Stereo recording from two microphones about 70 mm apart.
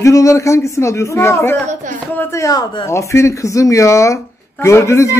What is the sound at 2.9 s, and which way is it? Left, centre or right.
Speech, left.